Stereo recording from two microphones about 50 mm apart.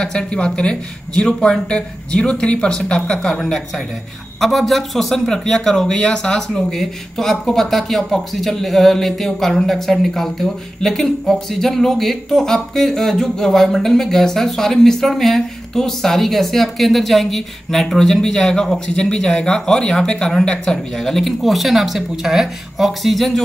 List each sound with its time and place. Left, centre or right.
0.0 s a man's voice: centre